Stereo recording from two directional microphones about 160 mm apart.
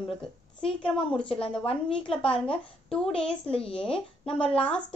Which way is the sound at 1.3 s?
35° left (ahead or behind).